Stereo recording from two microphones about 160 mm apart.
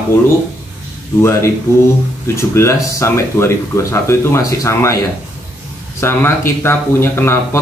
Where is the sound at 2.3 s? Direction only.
15° left (ahead or behind).